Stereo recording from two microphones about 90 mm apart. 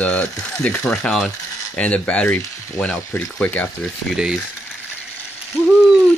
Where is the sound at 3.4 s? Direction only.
15° left (ahead or behind).